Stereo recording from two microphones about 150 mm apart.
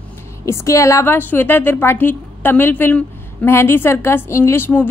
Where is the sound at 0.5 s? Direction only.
20° left (ahead or behind).